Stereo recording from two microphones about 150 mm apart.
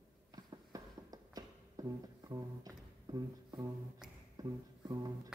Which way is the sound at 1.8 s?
25° right (ahead or behind).